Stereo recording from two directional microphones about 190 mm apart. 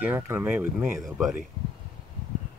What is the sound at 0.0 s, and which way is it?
Speech, 10° right (ahead or behind).